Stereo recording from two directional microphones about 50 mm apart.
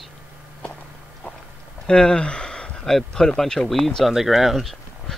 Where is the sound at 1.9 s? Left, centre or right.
Centre.